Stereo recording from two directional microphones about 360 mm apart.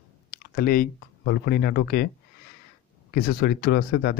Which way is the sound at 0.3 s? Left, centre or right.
Left.